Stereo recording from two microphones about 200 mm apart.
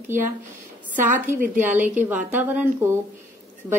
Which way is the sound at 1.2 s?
10° right (ahead or behind).